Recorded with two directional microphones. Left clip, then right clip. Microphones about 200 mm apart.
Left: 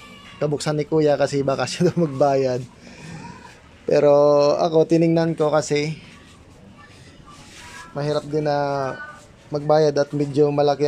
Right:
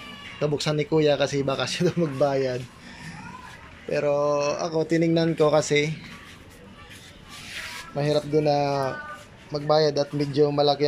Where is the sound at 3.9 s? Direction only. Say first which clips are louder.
Left 8 dB; 25° left (ahead or behind); by 5.9 s centre (ahead or behind).